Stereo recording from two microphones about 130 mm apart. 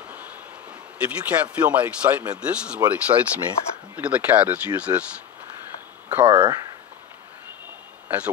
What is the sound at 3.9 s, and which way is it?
Speech, 10° right (ahead or behind).